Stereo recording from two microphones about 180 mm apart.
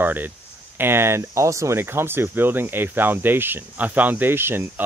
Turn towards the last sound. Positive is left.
turn(degrees=-10)  # may be behind; listen again after turning